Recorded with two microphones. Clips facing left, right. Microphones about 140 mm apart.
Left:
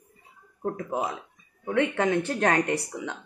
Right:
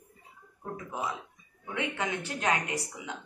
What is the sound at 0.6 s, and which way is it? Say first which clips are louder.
Speech: left 7 dB; 55° left (ahead or behind).